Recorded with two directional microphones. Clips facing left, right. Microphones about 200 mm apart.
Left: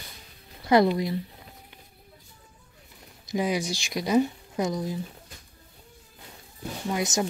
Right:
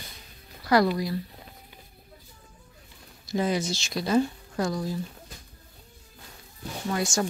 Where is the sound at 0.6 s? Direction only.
20° left (ahead or behind).